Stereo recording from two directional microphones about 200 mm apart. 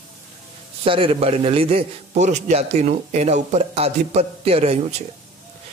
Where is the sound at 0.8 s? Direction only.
25° right (ahead or behind).